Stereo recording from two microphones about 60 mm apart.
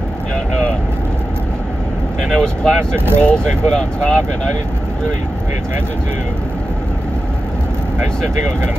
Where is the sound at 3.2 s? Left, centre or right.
Centre.